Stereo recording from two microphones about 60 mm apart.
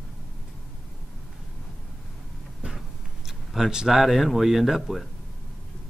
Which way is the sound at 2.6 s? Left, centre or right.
Right.